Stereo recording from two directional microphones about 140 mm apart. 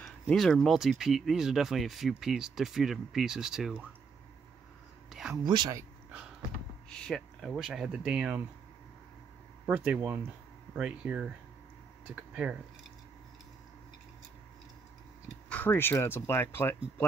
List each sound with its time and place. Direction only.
0.0 s speech: 5° left (ahead or behind)
5.1 s a sound: centre (ahead or behind)
5.5 s speech: 30° right (ahead or behind)
6.9 s speech: 5° left (ahead or behind)
9.7 s speech: 15° right (ahead or behind)
15.5 s speech: 15° left (ahead or behind)